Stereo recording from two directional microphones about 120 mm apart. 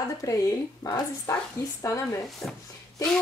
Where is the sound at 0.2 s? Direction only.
25° left (ahead or behind).